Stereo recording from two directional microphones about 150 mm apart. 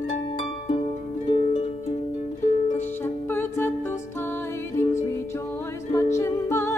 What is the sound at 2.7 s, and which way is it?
Music, 15° left (ahead or behind).